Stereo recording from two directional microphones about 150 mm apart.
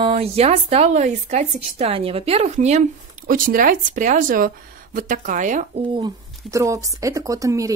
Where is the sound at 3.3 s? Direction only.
70° right (ahead or behind).